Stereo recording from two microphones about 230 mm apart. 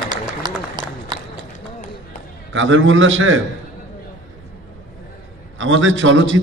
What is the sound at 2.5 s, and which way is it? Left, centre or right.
Speech, right.